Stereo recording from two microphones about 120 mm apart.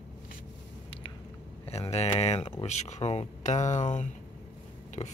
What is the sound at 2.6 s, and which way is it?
Speech, 75° left (ahead or behind).